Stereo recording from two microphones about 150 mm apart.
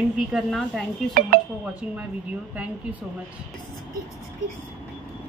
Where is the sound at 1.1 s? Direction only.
75° right (ahead or behind).